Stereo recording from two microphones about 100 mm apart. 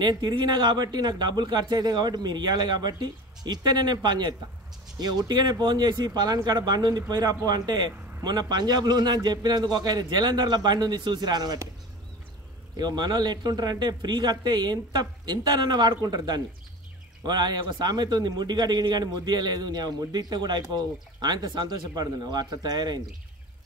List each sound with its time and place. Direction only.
0.0 s a man's voice: 50° right (ahead or behind)
12.7 s a man's voice: 45° right (ahead or behind)